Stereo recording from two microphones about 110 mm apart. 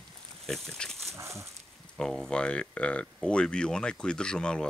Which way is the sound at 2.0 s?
5° left (ahead or behind).